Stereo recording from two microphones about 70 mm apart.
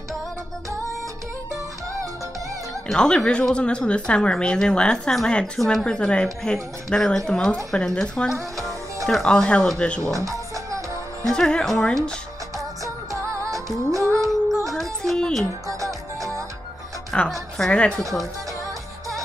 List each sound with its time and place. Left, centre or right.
2.9 s speech: centre
8.6 s music: centre
9.8 s speech: centre
10.2 s music: right
11.2 s speech: centre
12.8 s music: right
14.7 s music: centre
15.6 s music: right
17.1 s music: centre
17.6 s speech: centre